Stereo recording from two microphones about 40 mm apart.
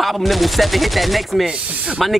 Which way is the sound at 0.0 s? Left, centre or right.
Centre.